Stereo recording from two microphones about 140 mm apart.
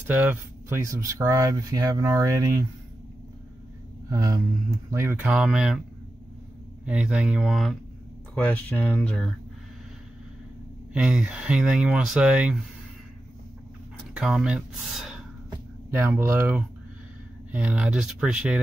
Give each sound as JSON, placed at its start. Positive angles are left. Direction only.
{"t": 0.0, "sound": "speech", "side_deg": -15}
{"t": 4.1, "sound": "speech", "side_deg": -25}
{"t": 5.3, "sound": "speech", "side_deg": -5}
{"t": 6.9, "sound": "speech", "side_deg": -10}
{"t": 8.4, "sound": "speech", "side_deg": 10}
{"t": 10.9, "sound": "speech", "side_deg": -5}
{"t": 14.1, "sound": "speech", "side_deg": -5}
{"t": 15.9, "sound": "speech", "side_deg": -15}